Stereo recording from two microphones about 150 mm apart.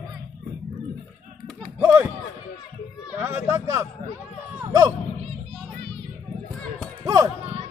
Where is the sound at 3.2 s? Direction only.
15° right (ahead or behind).